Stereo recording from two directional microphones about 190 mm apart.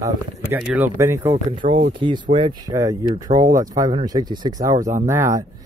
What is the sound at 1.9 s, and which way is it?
Speech, 25° right (ahead or behind).